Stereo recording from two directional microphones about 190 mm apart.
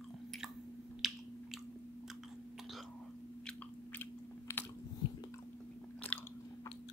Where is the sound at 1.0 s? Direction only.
Centre (ahead or behind).